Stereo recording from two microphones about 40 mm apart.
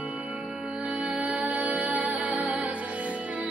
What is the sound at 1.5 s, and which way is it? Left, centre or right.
Music, right.